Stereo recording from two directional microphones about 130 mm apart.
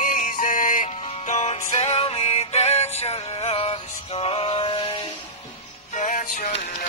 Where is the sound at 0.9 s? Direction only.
50° left (ahead or behind).